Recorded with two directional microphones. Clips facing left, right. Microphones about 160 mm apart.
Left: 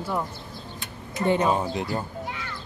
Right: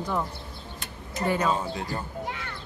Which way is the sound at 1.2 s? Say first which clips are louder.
Left 3 dB; 20° left (ahead or behind).